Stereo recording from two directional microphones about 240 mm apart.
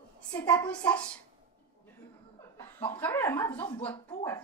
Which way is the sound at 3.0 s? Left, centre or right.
Centre.